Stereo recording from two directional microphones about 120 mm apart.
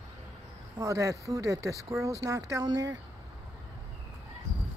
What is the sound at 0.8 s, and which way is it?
Speech, 25° right (ahead or behind).